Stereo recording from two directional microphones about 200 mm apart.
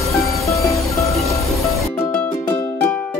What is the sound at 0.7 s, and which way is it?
Music, 15° left (ahead or behind).